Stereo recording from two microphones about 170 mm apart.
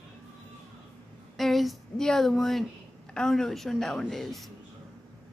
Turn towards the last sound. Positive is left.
turn(degrees=0)  # may be behind; listen again after turning